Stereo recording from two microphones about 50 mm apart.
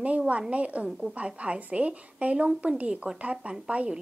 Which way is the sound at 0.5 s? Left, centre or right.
Right.